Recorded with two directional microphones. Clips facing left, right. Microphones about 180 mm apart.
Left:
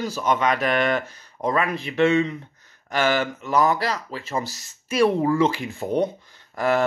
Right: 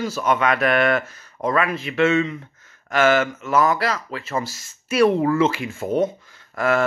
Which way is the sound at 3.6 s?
35° left (ahead or behind).